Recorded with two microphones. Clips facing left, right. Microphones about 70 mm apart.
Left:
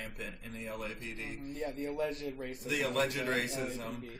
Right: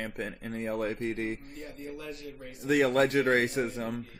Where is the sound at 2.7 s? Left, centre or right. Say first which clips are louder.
Right 9 dB; right.